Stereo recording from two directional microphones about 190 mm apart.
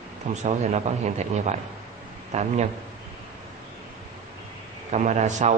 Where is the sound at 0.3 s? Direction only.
35° right (ahead or behind).